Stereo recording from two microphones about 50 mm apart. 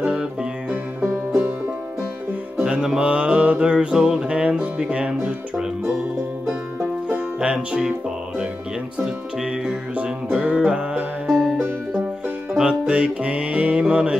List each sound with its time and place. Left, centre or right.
0.0 s music: centre
2.5 s music: centre
7.3 s speech: centre
8.9 s music: centre
11.3 s music: centre
12.6 s music: centre